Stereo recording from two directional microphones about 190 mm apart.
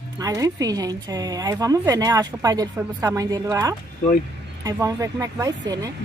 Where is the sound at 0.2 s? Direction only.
20° right (ahead or behind).